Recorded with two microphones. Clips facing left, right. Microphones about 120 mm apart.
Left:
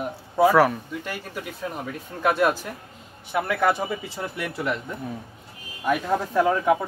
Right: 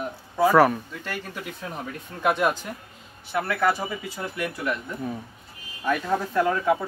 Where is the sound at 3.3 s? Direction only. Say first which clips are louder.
Left 1 dB; 20° left (ahead or behind).